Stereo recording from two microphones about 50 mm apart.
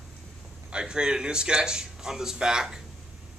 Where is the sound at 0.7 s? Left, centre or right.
Centre.